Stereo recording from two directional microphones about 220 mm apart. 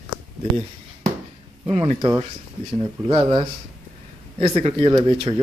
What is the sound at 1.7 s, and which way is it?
Speech, 25° right (ahead or behind).